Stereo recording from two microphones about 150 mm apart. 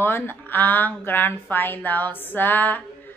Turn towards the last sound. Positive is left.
turn(degrees=10)  # may be behind; listen again after turning